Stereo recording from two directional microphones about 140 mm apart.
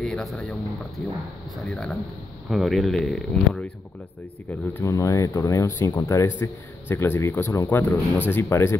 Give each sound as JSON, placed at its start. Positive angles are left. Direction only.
{"t": 0.0, "sound": "speech", "side_deg": 0}
{"t": 4.5, "sound": "speech", "side_deg": 15}